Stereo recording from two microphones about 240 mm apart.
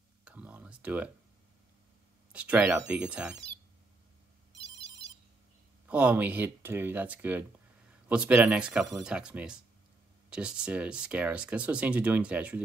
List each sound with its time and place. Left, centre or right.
0.2 s a sound: centre
2.3 s speech: centre
4.6 s ringtone: right
5.9 s speech: centre